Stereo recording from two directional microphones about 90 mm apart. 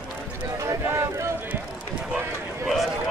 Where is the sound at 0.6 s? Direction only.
35° right (ahead or behind).